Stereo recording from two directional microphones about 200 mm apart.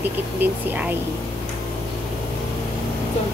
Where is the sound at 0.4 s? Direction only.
10° right (ahead or behind).